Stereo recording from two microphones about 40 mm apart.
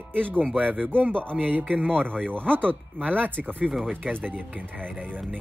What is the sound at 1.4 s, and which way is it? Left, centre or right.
Speech, right.